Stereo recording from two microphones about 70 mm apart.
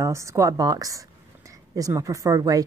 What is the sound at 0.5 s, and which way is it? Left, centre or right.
A woman's voice, right.